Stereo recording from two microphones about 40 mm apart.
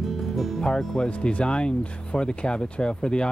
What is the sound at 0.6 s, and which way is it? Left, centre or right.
Speech, centre.